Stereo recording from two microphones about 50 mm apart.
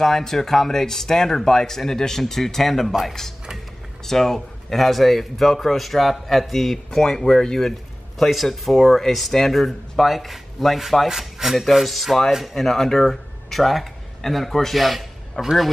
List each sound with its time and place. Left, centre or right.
0.0 s speech: centre
4.0 s speech: centre